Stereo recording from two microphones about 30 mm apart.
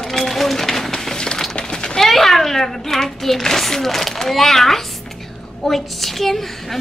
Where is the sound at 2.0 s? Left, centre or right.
Centre.